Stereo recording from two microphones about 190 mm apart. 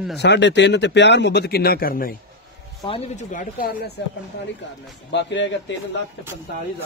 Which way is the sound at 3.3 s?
45° left (ahead or behind).